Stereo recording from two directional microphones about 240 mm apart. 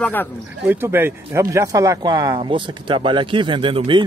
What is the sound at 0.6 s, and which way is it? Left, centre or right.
Speech, centre.